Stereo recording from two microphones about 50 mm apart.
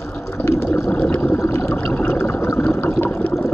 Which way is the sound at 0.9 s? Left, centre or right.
Left.